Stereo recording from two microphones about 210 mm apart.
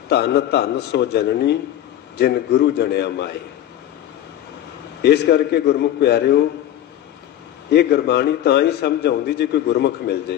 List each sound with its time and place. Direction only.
0.1 s a man's voice: 50° left (ahead or behind)
5.0 s a man's voice: 50° left (ahead or behind)
7.7 s a man's voice: 50° left (ahead or behind)